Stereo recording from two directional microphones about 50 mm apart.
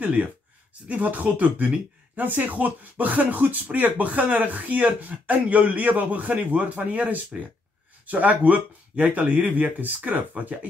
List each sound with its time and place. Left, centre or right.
0.0 s speech: right